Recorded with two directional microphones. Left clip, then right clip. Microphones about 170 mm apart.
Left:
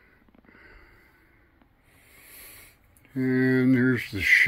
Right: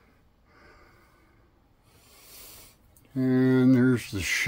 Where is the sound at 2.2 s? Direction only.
15° right (ahead or behind).